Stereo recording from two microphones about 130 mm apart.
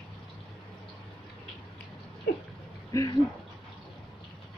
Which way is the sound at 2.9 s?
25° left (ahead or behind).